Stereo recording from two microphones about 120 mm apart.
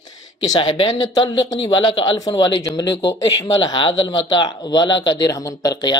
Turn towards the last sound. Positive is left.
turn(degrees=35)  # may be behind; listen again after turning